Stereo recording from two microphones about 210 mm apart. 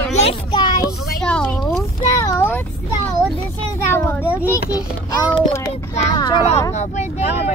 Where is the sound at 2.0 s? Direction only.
15° left (ahead or behind).